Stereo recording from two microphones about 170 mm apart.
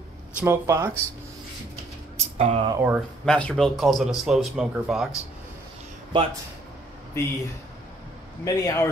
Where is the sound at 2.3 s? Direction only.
40° right (ahead or behind).